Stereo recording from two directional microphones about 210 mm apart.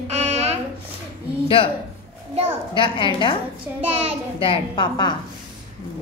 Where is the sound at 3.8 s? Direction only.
30° right (ahead or behind).